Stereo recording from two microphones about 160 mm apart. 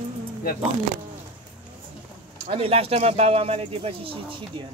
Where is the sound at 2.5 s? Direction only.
40° right (ahead or behind).